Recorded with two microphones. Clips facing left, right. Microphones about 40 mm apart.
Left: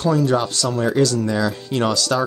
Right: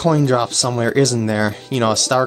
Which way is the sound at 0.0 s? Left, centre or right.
Right.